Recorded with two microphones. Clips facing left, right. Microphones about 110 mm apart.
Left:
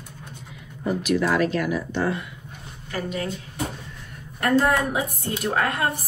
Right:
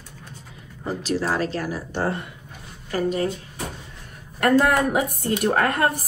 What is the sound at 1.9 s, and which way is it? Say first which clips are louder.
Speech: even; 50° right (ahead or behind).